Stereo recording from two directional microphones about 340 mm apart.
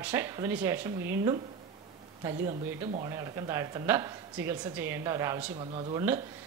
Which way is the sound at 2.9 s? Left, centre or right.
Centre.